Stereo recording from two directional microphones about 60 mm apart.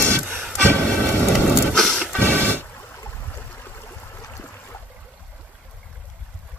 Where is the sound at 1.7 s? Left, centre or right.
Centre.